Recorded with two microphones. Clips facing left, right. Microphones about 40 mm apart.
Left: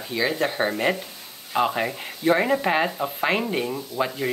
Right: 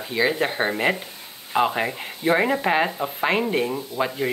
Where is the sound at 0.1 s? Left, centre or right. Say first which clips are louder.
Right 2 dB; centre.